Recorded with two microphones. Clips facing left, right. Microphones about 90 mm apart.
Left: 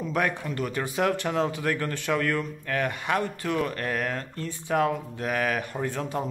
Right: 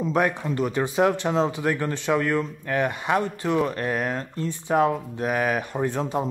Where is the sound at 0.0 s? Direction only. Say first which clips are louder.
Right 4 dB; 25° right (ahead or behind).